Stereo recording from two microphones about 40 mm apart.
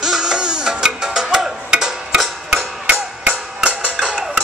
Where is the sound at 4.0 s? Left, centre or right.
Centre.